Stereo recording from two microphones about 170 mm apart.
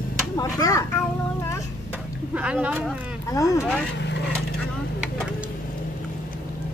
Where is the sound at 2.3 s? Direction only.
5° right (ahead or behind).